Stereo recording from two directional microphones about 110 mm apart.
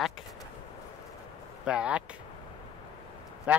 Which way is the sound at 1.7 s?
10° right (ahead or behind).